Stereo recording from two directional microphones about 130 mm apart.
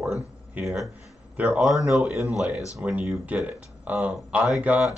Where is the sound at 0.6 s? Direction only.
5° right (ahead or behind).